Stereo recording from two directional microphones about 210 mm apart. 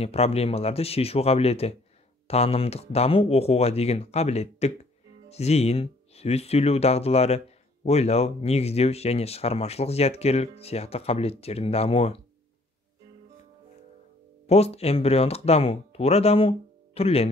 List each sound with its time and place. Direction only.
0.0 s speech: 30° left (ahead or behind)
14.4 s speech: 30° left (ahead or behind)